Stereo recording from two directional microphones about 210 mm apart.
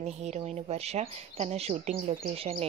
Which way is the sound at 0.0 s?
30° right (ahead or behind).